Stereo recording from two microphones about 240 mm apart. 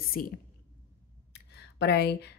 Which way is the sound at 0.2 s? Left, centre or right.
Left.